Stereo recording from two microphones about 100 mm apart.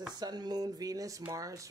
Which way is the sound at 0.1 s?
45° right (ahead or behind).